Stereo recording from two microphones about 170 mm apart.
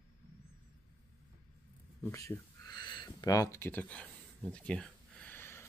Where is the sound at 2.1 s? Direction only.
20° left (ahead or behind).